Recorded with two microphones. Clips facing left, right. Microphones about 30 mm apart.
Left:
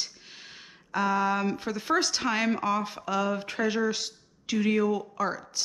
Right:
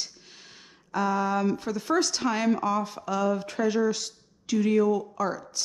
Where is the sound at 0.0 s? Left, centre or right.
Centre.